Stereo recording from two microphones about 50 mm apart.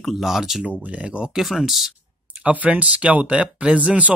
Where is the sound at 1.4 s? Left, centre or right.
Centre.